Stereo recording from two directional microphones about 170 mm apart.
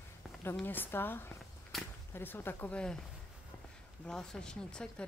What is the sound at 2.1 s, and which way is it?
Speech, 10° left (ahead or behind).